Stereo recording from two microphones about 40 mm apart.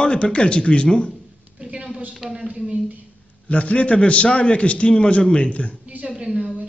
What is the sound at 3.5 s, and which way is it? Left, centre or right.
A man's voice, left.